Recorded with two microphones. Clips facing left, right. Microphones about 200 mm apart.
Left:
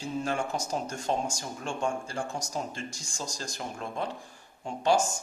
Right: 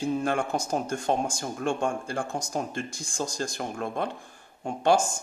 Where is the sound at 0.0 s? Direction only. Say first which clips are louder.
Right 5 dB; 55° right (ahead or behind).